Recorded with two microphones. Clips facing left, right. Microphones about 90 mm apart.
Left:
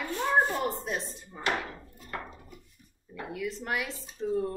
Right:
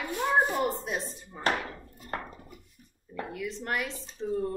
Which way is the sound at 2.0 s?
45° right (ahead or behind).